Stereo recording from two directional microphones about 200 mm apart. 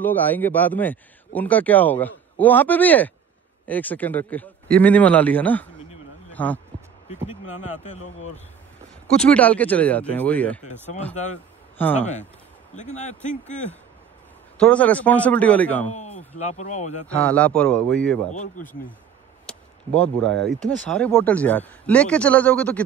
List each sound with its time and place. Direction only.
0.0 s speech: 10° left (ahead or behind)
7.8 s speech: 35° left (ahead or behind)
9.2 s speech: 5° left (ahead or behind)
12.0 s speech: 35° left (ahead or behind)
14.6 s speech: 5° left (ahead or behind)
15.9 s a sound: 35° left (ahead or behind)
16.3 s speech: 35° left (ahead or behind)
17.1 s a man's voice: 5° left (ahead or behind)
18.3 s speech: 35° left (ahead or behind)
19.9 s speech: 5° left (ahead or behind)